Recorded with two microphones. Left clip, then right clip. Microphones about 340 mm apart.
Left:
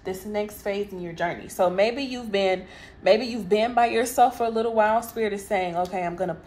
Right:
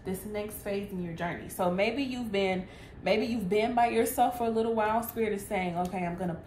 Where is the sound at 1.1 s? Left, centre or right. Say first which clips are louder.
Left 9 dB; left.